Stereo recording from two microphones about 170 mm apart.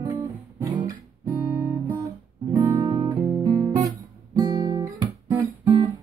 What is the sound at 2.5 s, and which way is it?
Guitar, 20° right (ahead or behind).